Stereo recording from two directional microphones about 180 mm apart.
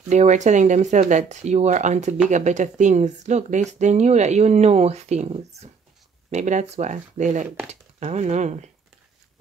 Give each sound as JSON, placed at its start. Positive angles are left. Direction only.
{"t": 0.1, "sound": "speech", "side_deg": -40}